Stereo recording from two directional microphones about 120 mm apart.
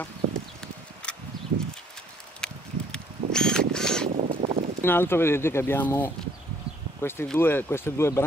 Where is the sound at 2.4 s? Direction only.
5° left (ahead or behind).